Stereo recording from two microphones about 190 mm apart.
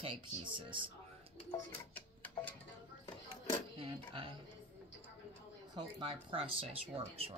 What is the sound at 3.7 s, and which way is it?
Speech, 25° right (ahead or behind).